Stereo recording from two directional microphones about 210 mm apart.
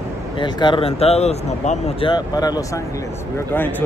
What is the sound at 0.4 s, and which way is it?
Speech, 20° left (ahead or behind).